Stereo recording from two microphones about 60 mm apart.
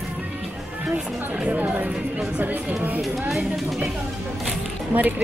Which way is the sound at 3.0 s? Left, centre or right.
Centre.